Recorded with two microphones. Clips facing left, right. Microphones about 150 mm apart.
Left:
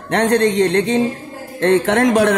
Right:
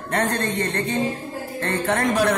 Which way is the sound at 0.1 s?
80° left.